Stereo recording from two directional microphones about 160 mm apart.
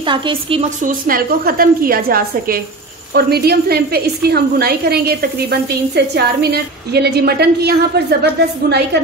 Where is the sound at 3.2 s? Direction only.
85° right.